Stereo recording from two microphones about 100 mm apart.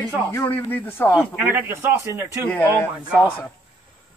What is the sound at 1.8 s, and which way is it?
Speech, 30° right (ahead or behind).